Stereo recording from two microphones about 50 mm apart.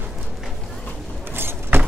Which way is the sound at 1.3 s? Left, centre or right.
Right.